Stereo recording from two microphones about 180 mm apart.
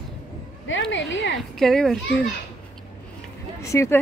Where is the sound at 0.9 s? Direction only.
90° left.